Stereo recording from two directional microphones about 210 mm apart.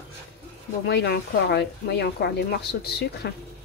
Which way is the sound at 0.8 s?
50° left (ahead or behind).